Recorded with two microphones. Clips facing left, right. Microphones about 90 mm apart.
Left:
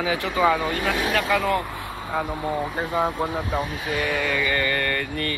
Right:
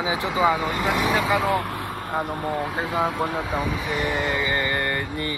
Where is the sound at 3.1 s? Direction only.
80° right.